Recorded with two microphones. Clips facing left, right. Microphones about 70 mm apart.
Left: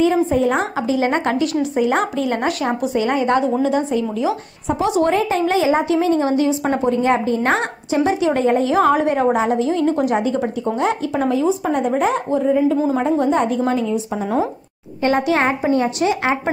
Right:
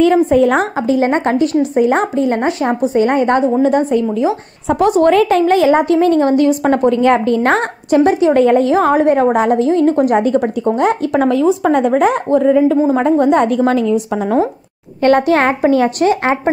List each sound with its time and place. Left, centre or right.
0.0 s a woman's voice: right
0.7 s a woman's voice: right
5.1 s a woman's voice: right
8.7 s a woman's voice: right
11.1 s a woman's voice: right
14.2 s speech: right
15.0 s a woman's voice: right